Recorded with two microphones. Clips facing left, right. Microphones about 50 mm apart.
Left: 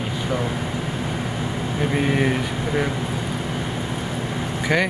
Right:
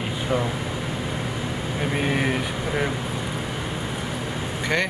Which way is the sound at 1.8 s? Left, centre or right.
Centre.